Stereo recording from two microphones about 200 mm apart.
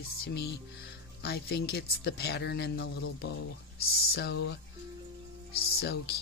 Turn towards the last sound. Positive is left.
turn(degrees=50)  # may be behind; listen again after turning